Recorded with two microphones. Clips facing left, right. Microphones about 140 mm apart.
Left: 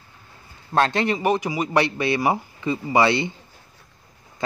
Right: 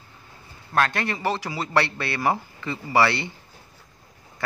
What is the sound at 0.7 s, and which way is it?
Speech, 25° left (ahead or behind).